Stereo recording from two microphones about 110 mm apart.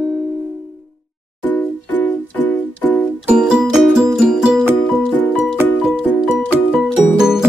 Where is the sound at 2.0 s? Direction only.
15° left (ahead or behind).